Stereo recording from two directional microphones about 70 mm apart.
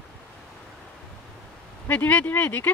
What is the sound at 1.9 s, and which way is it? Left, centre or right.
Speech, left.